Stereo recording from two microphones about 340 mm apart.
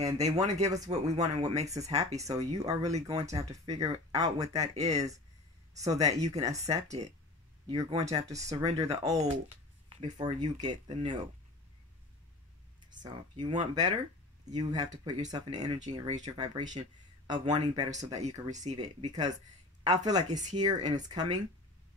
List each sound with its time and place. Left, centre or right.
0.0 s speech: centre
13.0 s speech: centre